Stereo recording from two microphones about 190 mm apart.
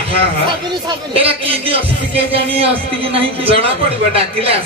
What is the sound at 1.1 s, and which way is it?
A man's voice, 30° right (ahead or behind).